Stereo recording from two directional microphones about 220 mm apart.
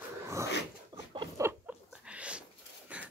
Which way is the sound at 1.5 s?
5° right (ahead or behind).